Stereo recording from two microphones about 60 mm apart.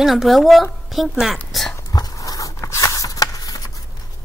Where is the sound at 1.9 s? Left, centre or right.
Left.